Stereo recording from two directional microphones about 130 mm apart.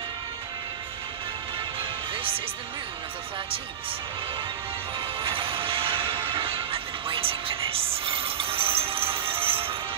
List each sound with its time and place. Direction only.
1.8 s music: 45° right (ahead or behind)
5.2 s music: 40° right (ahead or behind)